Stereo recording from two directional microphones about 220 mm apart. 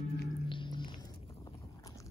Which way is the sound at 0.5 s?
20° left (ahead or behind).